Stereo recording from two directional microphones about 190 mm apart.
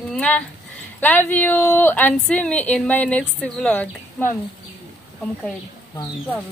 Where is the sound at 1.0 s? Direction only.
10° left (ahead or behind).